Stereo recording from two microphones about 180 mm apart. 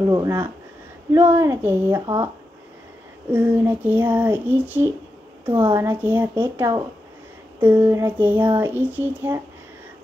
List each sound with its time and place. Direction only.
0.1 s speech: 20° right (ahead or behind)
3.3 s speech: 10° right (ahead or behind)